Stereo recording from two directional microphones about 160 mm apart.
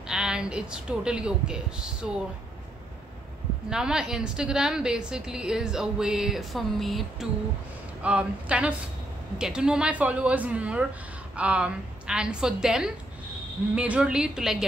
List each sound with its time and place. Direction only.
0.0 s a woman's voice: 5° right (ahead or behind)
3.7 s a woman's voice: 5° right (ahead or behind)